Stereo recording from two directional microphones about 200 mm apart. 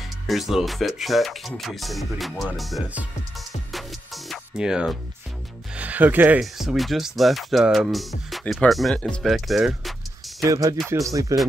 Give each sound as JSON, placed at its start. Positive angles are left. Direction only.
{"t": 0.3, "sound": "speech", "side_deg": 0}
{"t": 10.4, "sound": "speech", "side_deg": -15}